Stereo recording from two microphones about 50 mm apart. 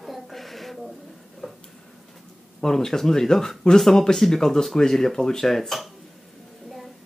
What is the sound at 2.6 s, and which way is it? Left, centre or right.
Speech, centre.